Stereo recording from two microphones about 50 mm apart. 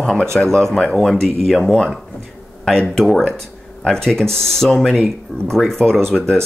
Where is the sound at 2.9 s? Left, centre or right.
Centre.